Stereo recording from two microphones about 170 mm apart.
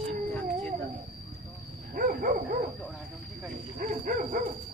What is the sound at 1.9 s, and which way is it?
Dog, 55° right (ahead or behind).